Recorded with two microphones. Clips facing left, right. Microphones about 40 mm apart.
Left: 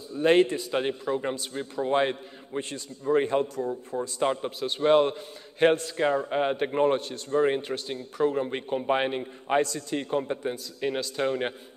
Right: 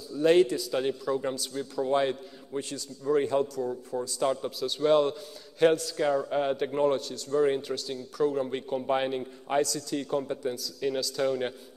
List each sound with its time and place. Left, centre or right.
0.1 s a man's voice: left